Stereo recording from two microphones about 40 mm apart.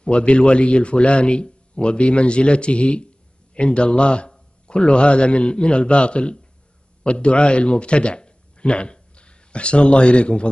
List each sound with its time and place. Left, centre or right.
0.0 s a man's voice: left